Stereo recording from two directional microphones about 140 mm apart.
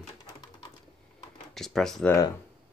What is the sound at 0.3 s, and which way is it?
Typewriter, 30° left (ahead or behind).